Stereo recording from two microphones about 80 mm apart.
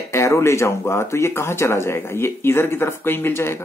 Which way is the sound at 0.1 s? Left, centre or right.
Left.